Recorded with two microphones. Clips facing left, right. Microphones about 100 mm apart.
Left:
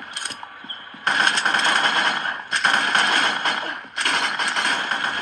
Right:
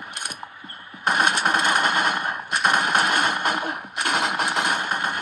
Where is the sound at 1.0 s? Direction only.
10° right (ahead or behind).